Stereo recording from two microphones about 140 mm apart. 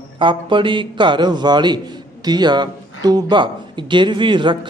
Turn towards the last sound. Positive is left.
turn(degrees=-35)  # may be behind; listen again after turning